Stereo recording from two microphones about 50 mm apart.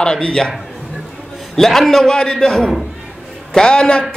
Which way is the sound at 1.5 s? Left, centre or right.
Centre.